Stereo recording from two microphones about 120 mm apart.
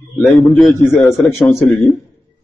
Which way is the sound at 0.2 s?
Centre (ahead or behind).